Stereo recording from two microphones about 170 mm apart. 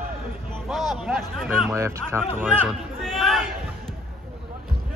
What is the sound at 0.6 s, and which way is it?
Speech, centre (ahead or behind).